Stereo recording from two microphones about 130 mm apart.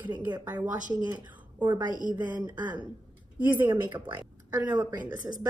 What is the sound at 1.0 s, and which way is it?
Speech, 30° right (ahead or behind).